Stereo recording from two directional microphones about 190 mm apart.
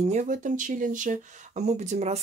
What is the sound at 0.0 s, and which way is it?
Speech, 40° right (ahead or behind).